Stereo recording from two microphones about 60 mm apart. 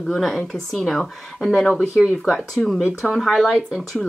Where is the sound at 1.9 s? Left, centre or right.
Centre.